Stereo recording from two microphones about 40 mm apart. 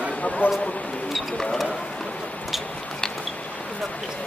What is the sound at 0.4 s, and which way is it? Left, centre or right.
Speech, left.